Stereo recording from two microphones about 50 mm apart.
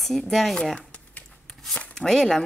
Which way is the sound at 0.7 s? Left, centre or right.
Left.